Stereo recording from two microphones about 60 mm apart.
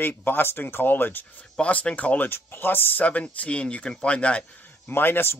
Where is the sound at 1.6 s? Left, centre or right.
Left.